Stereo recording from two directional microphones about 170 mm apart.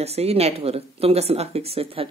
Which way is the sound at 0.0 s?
40° right (ahead or behind).